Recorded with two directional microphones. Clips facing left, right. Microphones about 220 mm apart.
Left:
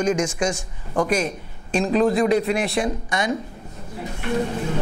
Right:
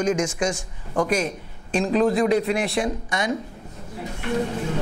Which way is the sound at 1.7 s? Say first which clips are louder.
Left 1 dB; 15° left (ahead or behind).